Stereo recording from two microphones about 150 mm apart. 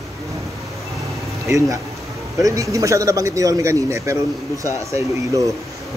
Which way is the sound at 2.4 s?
20° right (ahead or behind).